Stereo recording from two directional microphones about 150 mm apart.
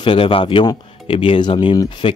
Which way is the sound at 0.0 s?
35° left (ahead or behind).